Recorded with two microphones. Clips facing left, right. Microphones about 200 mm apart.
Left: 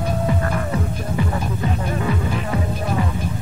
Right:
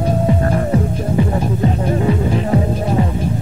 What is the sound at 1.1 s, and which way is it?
Music, 30° right (ahead or behind).